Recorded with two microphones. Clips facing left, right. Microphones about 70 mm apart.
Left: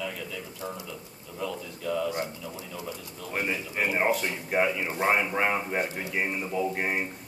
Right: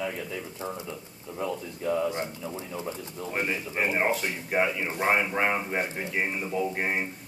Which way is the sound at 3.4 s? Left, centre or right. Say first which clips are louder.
Even; centre.